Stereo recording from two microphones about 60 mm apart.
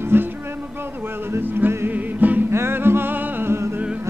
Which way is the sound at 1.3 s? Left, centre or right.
Right.